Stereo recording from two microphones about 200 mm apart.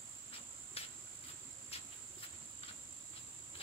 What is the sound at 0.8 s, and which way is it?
Cricket, 30° left (ahead or behind).